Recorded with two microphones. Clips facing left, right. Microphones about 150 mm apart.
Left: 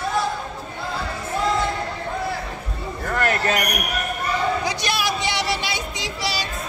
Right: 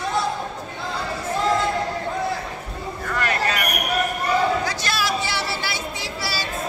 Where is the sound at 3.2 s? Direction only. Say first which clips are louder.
Left 2 dB; 45° left (ahead or behind).